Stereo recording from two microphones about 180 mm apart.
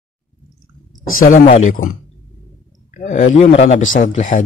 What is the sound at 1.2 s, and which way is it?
A man's voice, 45° left (ahead or behind).